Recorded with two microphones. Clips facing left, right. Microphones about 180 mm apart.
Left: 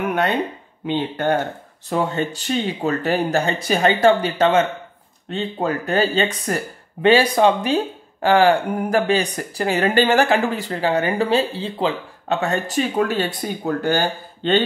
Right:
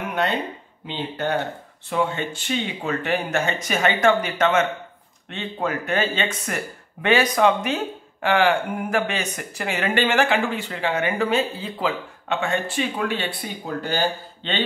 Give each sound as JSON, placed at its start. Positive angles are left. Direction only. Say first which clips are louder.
{"t": 0.8, "sound": "speech", "louder": "left 6 dB", "side_deg": 50}